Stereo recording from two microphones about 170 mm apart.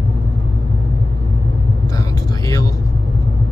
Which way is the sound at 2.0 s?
20° left (ahead or behind).